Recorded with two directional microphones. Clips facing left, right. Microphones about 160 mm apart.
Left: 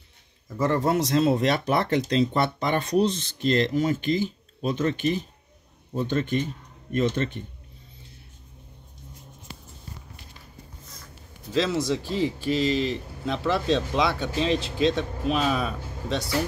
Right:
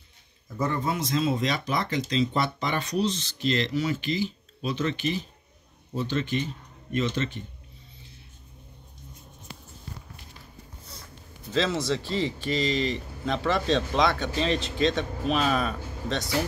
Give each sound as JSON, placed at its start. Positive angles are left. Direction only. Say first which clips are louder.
{"t": 0.6, "sound": "speech", "louder": "left 5 dB", "side_deg": 80}
{"t": 11.5, "sound": "speech", "louder": "left 2 dB", "side_deg": 10}